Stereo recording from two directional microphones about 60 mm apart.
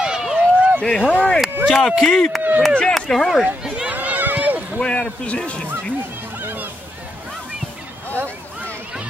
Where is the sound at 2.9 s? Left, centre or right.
Centre.